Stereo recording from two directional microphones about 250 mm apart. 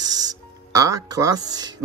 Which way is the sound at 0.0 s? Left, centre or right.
Centre.